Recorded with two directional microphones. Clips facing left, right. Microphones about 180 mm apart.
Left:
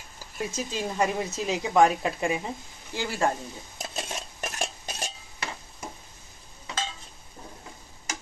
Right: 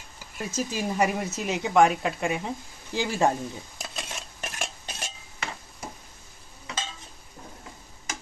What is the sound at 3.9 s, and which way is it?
Dishes, 35° left (ahead or behind).